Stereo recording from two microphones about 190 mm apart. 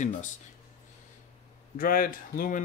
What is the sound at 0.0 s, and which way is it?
Speech, 40° left (ahead or behind).